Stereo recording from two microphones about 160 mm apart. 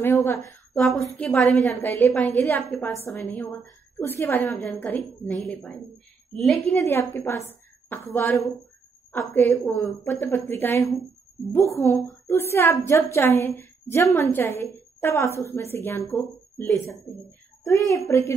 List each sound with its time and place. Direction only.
0.0 s a woman's voice: 15° left (ahead or behind)
6.8 s a woman's voice: 15° left (ahead or behind)